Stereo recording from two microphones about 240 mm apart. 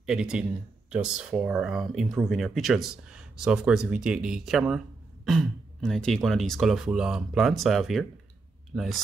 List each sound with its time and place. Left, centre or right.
0.0 s speech: centre